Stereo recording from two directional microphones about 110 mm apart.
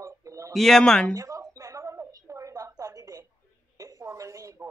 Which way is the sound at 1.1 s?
30° right (ahead or behind).